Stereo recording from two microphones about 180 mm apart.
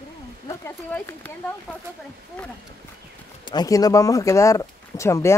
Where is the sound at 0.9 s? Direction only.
10° left (ahead or behind).